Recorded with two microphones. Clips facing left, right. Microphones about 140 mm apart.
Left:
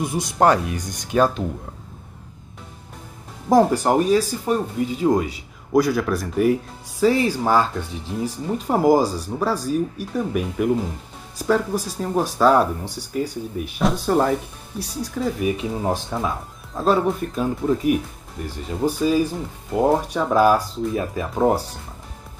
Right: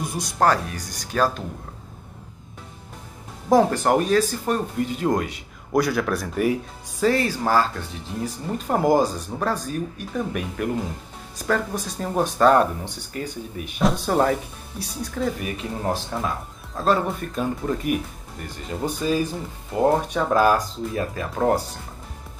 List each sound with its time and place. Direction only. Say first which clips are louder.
0.4 s speech: left 3 dB; 20° left (ahead or behind)
3.7 s speech: left 2 dB; 10° left (ahead or behind)
7.1 s speech: left 2 dB; 10° left (ahead or behind)